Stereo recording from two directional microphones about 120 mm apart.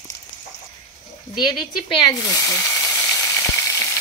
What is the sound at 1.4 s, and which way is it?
Speech, 40° left (ahead or behind).